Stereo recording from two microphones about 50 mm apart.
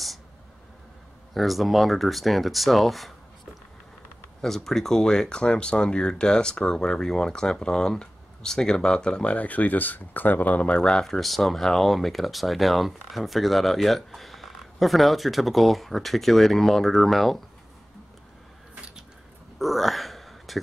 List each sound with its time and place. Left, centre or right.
1.3 s speech: centre
4.4 s speech: centre; by 10.7 s left
10.7 s speech: centre
19.6 s a sound: centre